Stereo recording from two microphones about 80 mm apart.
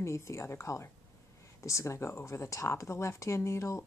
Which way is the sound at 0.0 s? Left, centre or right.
Left.